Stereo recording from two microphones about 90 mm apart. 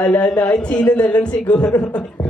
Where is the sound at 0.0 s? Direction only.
20° left (ahead or behind).